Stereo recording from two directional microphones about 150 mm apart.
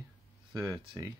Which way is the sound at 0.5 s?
25° right (ahead or behind).